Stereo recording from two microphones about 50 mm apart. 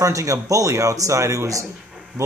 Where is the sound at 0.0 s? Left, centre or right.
Right.